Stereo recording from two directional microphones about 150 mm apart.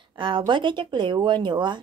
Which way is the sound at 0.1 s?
35° right (ahead or behind).